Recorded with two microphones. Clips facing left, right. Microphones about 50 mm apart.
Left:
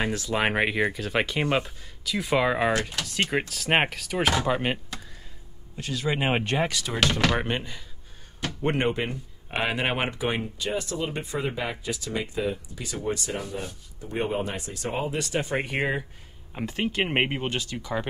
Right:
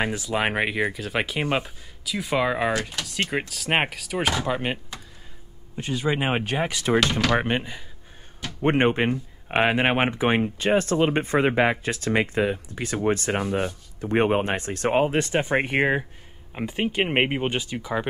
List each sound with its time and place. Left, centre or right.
0.0 s speech: centre
5.8 s speech: right
6.0 s speech: centre
6.7 s speech: right
8.6 s speech: right
13.4 s speech: right
14.0 s speech: right
15.1 s speech: right
16.5 s speech: centre